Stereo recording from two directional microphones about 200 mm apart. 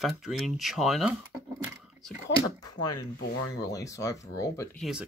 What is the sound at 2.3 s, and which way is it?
Speech, 20° left (ahead or behind).